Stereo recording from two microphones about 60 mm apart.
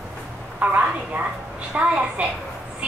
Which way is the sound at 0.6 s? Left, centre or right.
Right.